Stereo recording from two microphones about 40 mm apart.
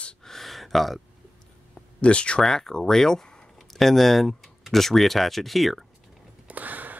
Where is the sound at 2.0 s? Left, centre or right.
Left.